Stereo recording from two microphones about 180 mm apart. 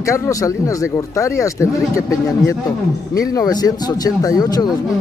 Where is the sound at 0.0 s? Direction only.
15° left (ahead or behind).